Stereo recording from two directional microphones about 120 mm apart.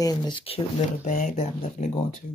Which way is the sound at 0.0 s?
35° left (ahead or behind).